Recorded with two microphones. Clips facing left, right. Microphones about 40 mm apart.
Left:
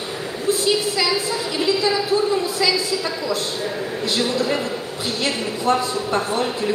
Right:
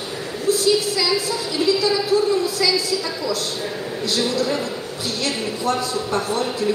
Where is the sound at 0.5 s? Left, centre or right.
Left.